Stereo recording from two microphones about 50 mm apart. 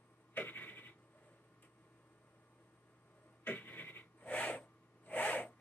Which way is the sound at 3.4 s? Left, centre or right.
Left.